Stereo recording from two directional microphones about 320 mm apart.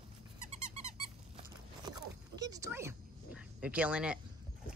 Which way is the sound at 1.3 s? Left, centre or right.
Centre.